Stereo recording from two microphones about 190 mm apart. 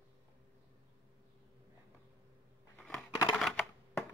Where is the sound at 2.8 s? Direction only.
Centre (ahead or behind).